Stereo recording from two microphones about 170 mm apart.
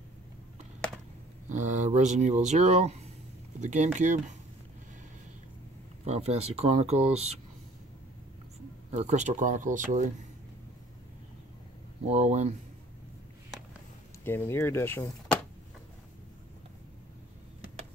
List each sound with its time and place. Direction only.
1.5 s speech: 45° right (ahead or behind)
6.0 s speech: 40° right (ahead or behind)
8.9 s speech: 40° right (ahead or behind)
12.1 s speech: 40° right (ahead or behind)
14.2 s speech: 15° left (ahead or behind)